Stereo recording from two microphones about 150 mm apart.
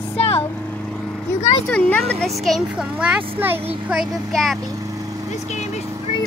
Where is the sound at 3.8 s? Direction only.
Centre (ahead or behind).